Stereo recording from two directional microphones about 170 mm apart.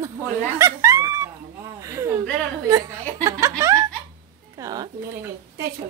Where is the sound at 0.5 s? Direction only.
15° right (ahead or behind).